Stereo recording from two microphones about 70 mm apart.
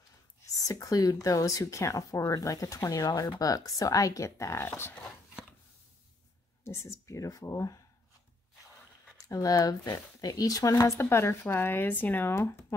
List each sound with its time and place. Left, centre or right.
0.7 s speech: left
6.6 s speech: left
9.2 s speech: left
10.7 s speech: left
12.4 s speech: left